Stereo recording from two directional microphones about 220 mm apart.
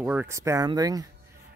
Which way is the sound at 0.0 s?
10° right (ahead or behind).